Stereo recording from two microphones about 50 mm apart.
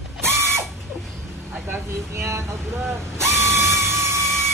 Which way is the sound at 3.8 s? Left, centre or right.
Right.